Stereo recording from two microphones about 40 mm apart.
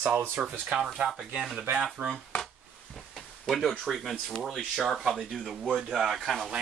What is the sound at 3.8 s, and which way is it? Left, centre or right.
Speech, centre.